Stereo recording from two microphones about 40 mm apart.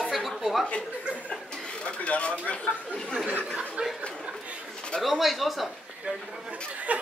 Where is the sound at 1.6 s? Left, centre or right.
Left.